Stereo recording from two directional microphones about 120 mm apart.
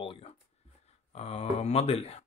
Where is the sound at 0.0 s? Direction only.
50° left (ahead or behind).